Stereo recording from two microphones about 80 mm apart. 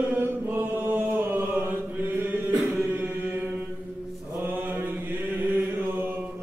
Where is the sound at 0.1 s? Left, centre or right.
Right.